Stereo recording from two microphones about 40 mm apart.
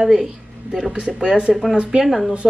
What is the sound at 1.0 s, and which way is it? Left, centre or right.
Speech, right.